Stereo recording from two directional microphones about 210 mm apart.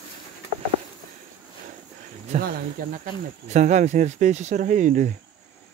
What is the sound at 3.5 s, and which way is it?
Speech, 35° right (ahead or behind).